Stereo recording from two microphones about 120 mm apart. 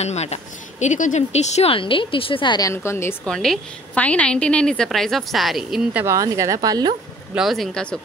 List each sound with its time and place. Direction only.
0.0 s speech: 65° left (ahead or behind); by 2.7 s 40° left (ahead or behind)
2.7 s a woman's voice: 20° left (ahead or behind)
3.3 s a woman's voice: 5° left (ahead or behind)
6.0 s a woman's voice: 25° right (ahead or behind)
7.3 s a woman's voice: centre (ahead or behind)